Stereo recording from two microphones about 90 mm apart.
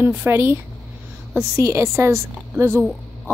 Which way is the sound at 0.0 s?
20° right (ahead or behind).